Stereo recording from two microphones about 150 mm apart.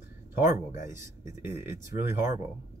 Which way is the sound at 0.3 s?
20° right (ahead or behind).